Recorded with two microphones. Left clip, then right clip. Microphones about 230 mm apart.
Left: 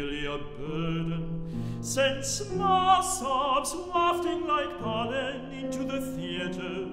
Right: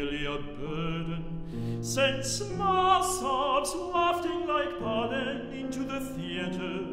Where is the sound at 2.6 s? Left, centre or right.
Left.